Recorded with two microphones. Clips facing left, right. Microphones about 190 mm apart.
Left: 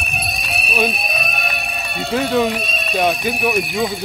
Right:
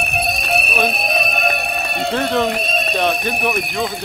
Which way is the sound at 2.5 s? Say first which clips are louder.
Right 4 dB; 55° right (ahead or behind).